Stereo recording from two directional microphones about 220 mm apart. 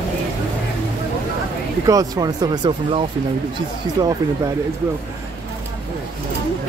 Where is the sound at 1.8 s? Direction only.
15° right (ahead or behind).